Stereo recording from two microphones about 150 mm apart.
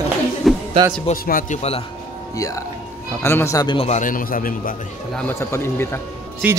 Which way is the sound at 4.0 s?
65° left (ahead or behind).